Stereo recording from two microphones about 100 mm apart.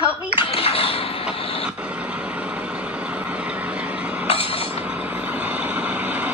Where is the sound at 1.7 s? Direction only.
15° right (ahead or behind).